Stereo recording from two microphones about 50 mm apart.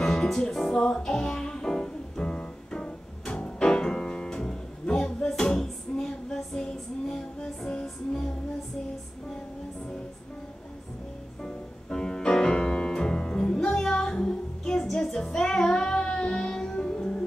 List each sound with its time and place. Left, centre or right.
0.0 s music: centre
5.4 s female singing: centre
11.4 s music: centre